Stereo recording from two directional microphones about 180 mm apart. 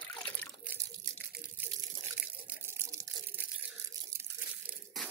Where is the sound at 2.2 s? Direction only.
10° right (ahead or behind).